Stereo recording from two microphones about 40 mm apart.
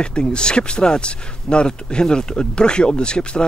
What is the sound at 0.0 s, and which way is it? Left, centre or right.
Speech, left.